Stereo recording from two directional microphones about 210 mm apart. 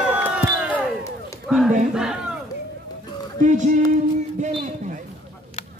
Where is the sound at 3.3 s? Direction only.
35° right (ahead or behind).